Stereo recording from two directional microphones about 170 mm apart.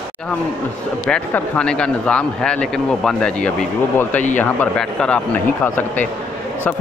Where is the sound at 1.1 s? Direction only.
5° left (ahead or behind).